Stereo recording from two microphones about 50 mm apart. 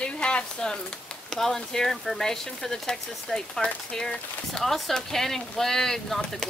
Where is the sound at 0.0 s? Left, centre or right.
Left.